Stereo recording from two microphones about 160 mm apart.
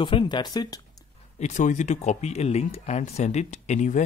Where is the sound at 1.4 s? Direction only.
50° left (ahead or behind).